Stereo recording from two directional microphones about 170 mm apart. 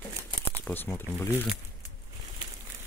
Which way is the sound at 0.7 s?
10° left (ahead or behind).